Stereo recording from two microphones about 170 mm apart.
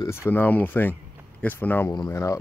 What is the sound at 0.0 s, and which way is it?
Speech, 15° left (ahead or behind).